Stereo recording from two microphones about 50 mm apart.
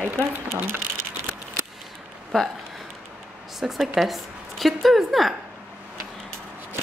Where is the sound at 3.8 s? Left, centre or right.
Centre.